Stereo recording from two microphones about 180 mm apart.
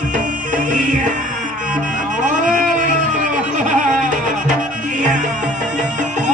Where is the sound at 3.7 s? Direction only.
45° right (ahead or behind).